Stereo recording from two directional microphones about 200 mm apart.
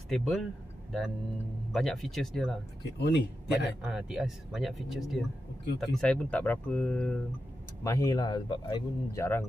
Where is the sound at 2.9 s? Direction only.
55° left (ahead or behind).